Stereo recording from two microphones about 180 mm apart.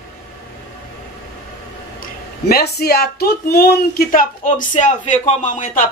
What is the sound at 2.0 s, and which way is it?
Speech, 60° left (ahead or behind).